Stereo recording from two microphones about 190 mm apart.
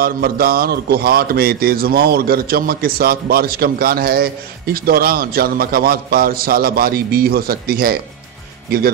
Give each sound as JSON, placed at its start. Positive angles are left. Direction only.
{"t": 0.0, "sound": "speech", "side_deg": -50}